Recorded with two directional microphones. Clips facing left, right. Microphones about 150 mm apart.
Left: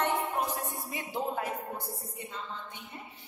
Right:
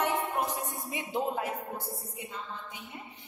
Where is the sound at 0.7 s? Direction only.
20° right (ahead or behind).